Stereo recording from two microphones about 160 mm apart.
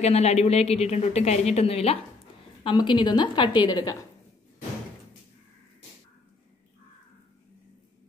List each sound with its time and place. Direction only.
0.0 s a woman's voice: 40° left (ahead or behind); by 3.9 s 25° left (ahead or behind)